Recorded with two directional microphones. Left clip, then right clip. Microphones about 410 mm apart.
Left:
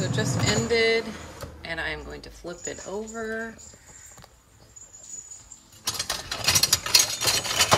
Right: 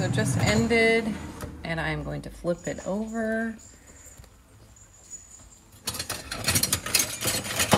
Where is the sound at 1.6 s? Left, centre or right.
Centre.